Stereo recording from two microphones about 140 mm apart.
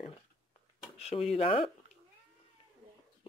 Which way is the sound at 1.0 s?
50° left (ahead or behind).